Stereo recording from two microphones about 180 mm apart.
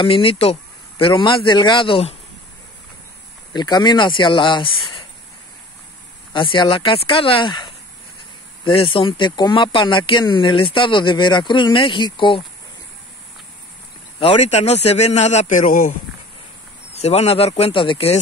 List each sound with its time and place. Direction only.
0.0 s speech: 30° left (ahead or behind)
3.5 s speech: 25° left (ahead or behind)
6.3 s speech: 25° left (ahead or behind)
14.2 s speech: 35° left (ahead or behind)
16.9 s speech: 35° left (ahead or behind)